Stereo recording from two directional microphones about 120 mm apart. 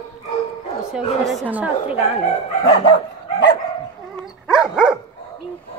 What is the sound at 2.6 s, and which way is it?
Dog, 50° left (ahead or behind).